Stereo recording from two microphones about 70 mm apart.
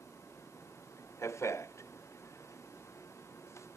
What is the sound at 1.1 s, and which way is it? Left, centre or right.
Speech, left.